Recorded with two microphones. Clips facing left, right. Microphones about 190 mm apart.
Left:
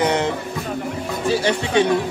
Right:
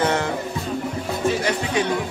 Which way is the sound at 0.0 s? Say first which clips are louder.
Left 2 dB; 20° left (ahead or behind).